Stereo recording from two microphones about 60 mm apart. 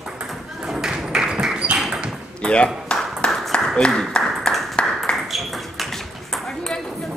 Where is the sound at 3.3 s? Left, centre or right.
Centre.